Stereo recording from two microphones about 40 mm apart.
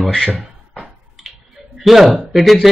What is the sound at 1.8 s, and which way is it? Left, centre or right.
Speech, centre.